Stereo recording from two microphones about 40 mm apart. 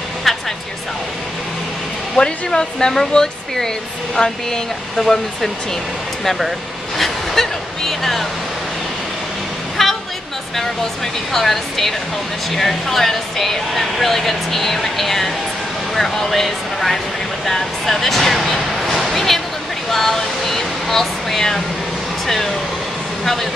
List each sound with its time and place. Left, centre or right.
2.1 s speech: centre
7.4 s speech: centre
9.8 s music: centre
11.3 s speech: centre